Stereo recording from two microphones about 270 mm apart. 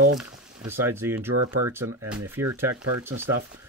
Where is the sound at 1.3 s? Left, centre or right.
Right.